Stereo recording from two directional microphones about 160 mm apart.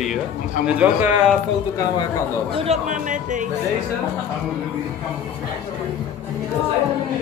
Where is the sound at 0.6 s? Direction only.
5° right (ahead or behind).